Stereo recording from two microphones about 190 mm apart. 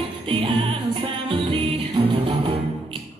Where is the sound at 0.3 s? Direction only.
25° right (ahead or behind).